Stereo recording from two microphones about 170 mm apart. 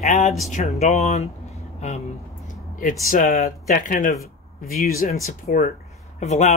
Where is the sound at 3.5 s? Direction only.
50° left (ahead or behind).